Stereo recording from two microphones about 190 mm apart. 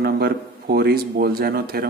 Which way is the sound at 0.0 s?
55° right (ahead or behind).